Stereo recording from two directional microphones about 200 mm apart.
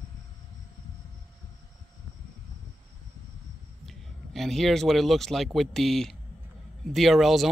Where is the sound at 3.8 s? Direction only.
Centre (ahead or behind).